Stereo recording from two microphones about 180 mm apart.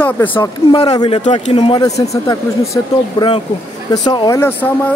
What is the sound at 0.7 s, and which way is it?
Speech, 30° left (ahead or behind).